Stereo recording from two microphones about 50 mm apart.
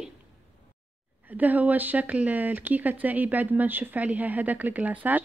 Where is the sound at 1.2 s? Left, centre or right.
Right.